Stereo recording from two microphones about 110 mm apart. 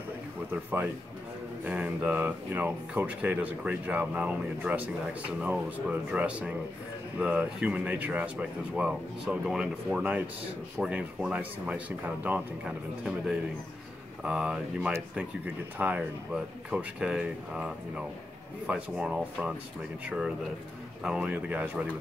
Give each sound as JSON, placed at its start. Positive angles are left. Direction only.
{"t": 0.5, "sound": "speech", "side_deg": -20}